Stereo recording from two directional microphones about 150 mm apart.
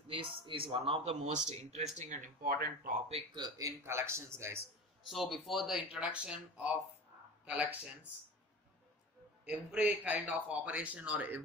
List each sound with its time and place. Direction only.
0.1 s speech: 35° right (ahead or behind); by 2.9 s 75° right (ahead or behind)
3.1 s a man's voice: 35° right (ahead or behind); by 4.6 s 15° right (ahead or behind)
5.1 s a man's voice: centre (ahead or behind)
9.4 s a man's voice: 10° right (ahead or behind)